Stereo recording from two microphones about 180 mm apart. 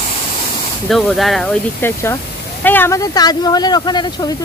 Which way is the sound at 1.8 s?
15° left (ahead or behind).